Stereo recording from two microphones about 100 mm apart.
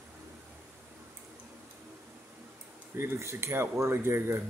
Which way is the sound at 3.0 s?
25° right (ahead or behind).